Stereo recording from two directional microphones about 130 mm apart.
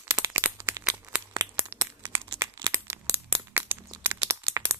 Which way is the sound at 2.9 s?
15° right (ahead or behind).